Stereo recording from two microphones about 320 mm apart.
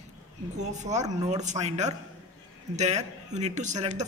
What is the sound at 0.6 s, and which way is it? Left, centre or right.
A man's voice, right.